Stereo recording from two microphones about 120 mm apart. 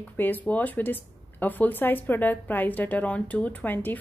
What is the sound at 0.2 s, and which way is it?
Speech, 15° left (ahead or behind).